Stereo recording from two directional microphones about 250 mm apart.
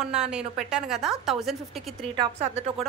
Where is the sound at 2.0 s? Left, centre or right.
Right.